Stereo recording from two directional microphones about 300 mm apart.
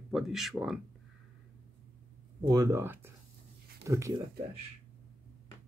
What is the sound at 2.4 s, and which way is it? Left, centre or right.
Speech, centre.